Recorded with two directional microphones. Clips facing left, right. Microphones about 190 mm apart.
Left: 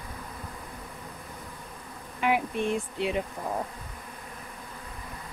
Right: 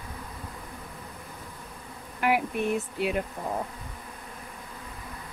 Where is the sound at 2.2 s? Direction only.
5° right (ahead or behind).